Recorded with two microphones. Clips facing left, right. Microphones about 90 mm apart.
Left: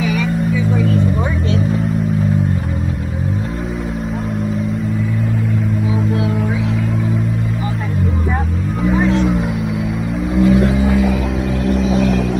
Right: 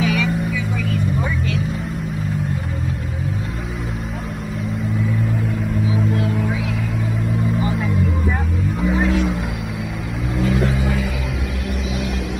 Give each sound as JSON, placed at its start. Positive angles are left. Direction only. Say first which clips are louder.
{"t": 0.0, "sound": "vehicle", "louder": "left 1 dB", "side_deg": 5}
{"t": 8.8, "sound": "music", "louder": "left 4 dB", "side_deg": 5}
{"t": 10.3, "sound": "vehicle", "louder": "left 7 dB", "side_deg": 5}
{"t": 11.9, "sound": "vehicle", "louder": "left 10 dB", "side_deg": 35}